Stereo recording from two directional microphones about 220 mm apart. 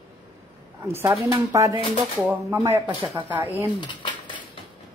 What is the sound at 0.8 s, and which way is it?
Speech, 10° right (ahead or behind).